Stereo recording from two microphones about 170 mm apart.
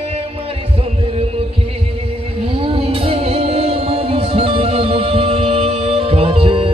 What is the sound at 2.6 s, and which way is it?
Music, 35° right (ahead or behind).